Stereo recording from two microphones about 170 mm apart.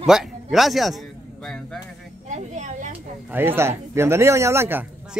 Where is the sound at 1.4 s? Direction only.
5° left (ahead or behind).